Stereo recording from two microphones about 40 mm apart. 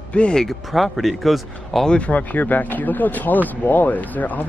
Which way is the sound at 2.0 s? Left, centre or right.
Left.